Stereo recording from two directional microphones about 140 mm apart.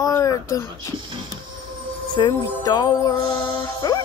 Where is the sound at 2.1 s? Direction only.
30° left (ahead or behind).